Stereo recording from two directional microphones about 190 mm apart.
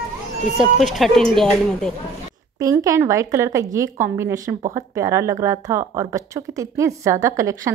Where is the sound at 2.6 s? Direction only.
15° right (ahead or behind).